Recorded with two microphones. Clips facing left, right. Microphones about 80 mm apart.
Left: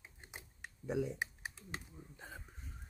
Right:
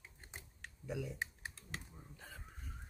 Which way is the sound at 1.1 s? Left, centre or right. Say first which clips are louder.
Left 2 dB; centre.